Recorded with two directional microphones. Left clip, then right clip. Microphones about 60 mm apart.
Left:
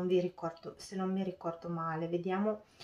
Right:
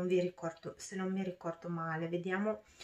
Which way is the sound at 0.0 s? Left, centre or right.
Right.